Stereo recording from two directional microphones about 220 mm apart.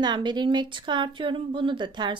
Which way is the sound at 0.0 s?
20° right (ahead or behind).